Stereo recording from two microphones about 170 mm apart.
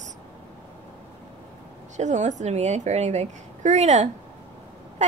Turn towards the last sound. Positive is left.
turn(degrees=-45)  # may be behind; listen again after turning